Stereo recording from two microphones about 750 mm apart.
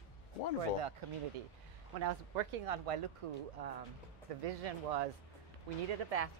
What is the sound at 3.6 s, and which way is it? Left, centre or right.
Speech, right.